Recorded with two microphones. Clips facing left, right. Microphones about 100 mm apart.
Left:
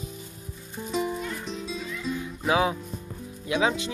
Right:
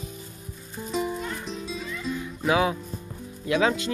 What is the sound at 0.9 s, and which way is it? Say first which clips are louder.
Music: even; centre (ahead or behind).